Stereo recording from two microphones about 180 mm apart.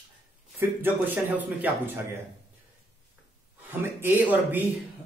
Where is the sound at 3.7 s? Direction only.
10° right (ahead or behind).